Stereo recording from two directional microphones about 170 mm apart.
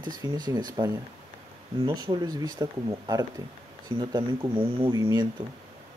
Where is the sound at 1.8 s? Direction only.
25° right (ahead or behind).